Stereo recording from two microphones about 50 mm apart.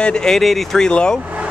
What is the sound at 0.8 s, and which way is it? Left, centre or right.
Speech, centre.